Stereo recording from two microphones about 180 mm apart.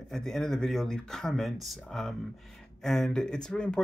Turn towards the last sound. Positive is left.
turn(degrees=5)  # may be behind; listen again after turning